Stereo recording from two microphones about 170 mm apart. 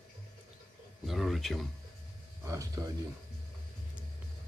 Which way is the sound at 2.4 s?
20° right (ahead or behind).